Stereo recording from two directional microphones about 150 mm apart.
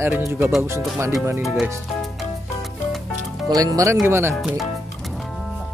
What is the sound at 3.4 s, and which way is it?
Speech, 25° right (ahead or behind).